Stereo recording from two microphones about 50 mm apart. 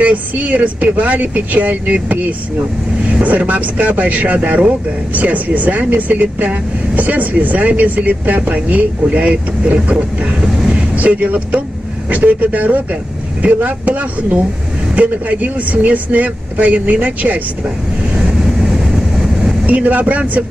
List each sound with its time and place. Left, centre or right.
0.0 s speech: right
19.6 s speech: right